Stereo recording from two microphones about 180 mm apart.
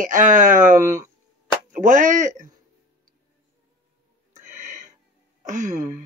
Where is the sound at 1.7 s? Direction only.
45° right (ahead or behind).